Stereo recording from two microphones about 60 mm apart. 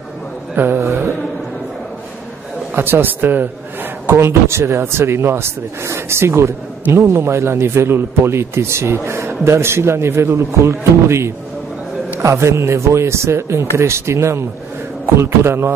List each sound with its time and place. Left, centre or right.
0.6 s a man's voice: right
0.8 s speech: right
2.7 s a man's voice: right
4.2 s speech: right